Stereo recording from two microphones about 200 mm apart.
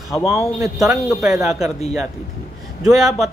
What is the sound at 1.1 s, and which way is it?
Speech, centre (ahead or behind).